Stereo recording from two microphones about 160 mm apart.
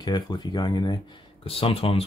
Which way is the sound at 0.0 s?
25° left (ahead or behind).